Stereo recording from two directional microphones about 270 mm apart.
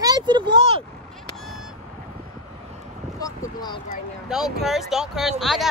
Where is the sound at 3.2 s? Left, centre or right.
Centre.